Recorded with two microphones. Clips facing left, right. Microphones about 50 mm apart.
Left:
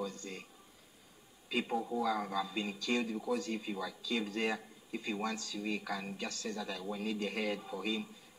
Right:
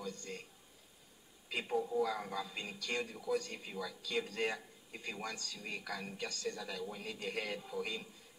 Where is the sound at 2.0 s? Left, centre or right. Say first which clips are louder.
Left 5 dB; left.